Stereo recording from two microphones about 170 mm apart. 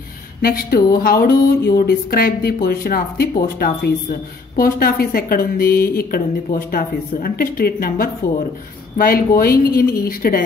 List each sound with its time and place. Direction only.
0.4 s a woman's voice: 60° left (ahead or behind)